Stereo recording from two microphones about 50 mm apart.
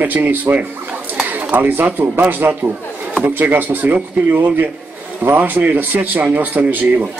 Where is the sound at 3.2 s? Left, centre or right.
Right.